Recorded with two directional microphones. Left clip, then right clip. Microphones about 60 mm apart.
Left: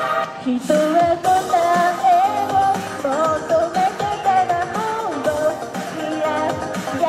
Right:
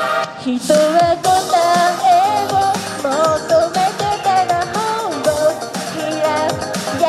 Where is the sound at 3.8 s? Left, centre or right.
Right.